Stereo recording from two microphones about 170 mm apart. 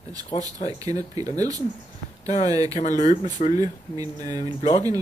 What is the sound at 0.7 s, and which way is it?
Speech, 20° right (ahead or behind).